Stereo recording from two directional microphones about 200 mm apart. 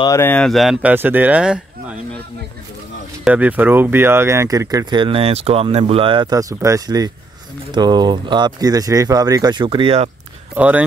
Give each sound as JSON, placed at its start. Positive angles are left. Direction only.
{"t": 0.0, "sound": "speech", "side_deg": 15}
{"t": 3.3, "sound": "speech", "side_deg": -10}
{"t": 10.5, "sound": "speech", "side_deg": -5}